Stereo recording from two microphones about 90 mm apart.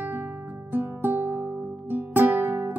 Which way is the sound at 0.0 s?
20° right (ahead or behind).